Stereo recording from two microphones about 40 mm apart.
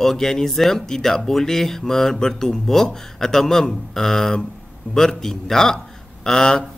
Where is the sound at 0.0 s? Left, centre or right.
Centre.